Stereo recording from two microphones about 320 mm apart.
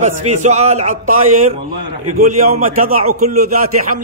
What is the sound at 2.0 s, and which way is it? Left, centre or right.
Speech, right.